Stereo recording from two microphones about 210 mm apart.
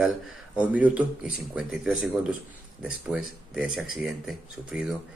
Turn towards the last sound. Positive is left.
turn(degrees=-5)  # may be behind; listen again after turning